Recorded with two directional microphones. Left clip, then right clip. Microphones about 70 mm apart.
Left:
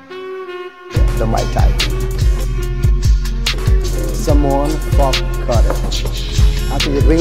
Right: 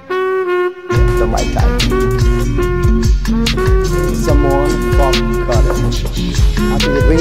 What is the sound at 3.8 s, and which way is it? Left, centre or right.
Music, right.